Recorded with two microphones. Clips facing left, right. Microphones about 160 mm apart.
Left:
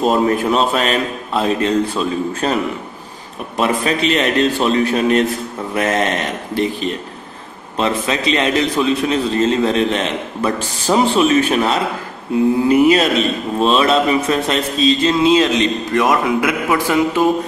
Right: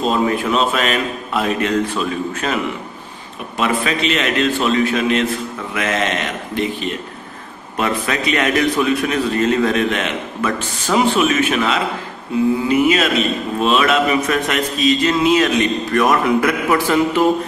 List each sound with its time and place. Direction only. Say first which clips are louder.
0.0 s a man's voice: left 3 dB; 45° left (ahead or behind); by 17.3 s 15° left (ahead or behind)